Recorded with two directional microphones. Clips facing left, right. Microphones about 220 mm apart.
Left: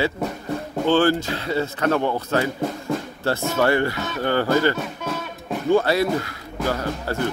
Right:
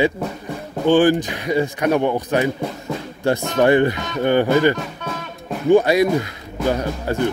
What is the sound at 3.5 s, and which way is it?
Speech, 20° right (ahead or behind).